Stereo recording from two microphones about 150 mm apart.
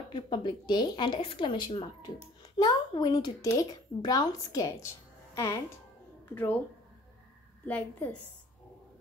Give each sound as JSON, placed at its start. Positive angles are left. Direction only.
{"t": 0.1, "sound": "a woman's voice", "side_deg": 30}
{"t": 7.6, "sound": "a woman's voice", "side_deg": 10}